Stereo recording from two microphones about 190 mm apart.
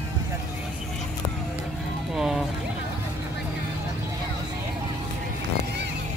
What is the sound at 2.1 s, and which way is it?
Speech, centre (ahead or behind).